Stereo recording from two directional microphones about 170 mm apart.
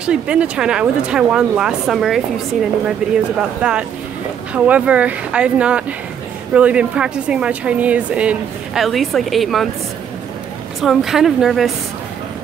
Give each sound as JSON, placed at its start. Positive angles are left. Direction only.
{"t": 0.0, "sound": "speech", "side_deg": -5}
{"t": 10.8, "sound": "speech", "side_deg": 0}